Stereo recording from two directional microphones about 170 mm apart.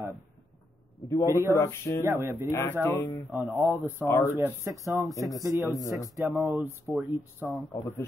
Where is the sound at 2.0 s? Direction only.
15° right (ahead or behind).